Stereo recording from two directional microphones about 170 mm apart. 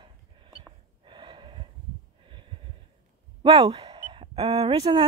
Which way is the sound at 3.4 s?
30° right (ahead or behind).